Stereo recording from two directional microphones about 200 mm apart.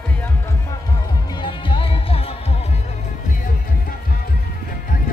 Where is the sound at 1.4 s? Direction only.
25° left (ahead or behind).